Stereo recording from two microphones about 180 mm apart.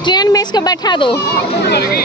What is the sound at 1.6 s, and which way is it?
Speech, 65° left (ahead or behind).